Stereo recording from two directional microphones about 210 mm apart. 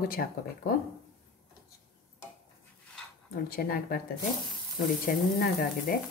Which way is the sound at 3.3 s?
45° left (ahead or behind).